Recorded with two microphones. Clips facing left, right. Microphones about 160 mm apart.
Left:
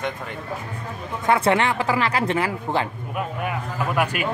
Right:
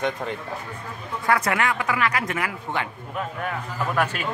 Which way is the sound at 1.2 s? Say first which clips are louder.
Left 4 dB; 25° left (ahead or behind).